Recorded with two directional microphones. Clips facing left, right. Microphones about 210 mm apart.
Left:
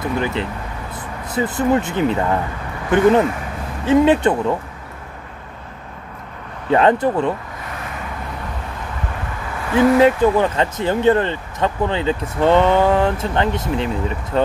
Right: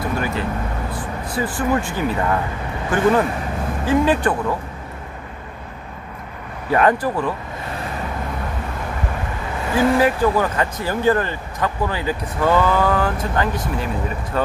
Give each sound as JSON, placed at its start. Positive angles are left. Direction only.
{"t": 0.0, "sound": "speech", "side_deg": 20}
{"t": 6.7, "sound": "speech", "side_deg": 25}
{"t": 9.9, "sound": "speech", "side_deg": 25}